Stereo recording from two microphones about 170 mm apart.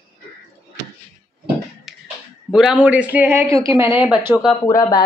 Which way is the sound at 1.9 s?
Centre (ahead or behind).